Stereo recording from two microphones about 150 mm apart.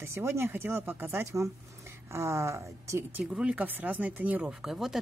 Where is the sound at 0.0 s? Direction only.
15° right (ahead or behind).